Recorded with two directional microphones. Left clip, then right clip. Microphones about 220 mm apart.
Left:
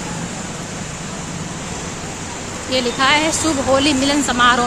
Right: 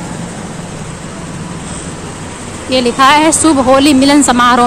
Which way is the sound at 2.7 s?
20° right (ahead or behind).